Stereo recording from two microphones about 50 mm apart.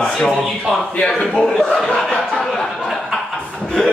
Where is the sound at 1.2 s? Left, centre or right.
Centre.